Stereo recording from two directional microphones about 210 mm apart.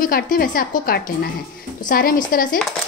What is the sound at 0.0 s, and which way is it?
Speech, 45° left (ahead or behind).